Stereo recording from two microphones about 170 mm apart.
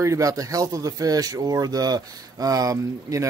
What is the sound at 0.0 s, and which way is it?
Speech, 20° right (ahead or behind).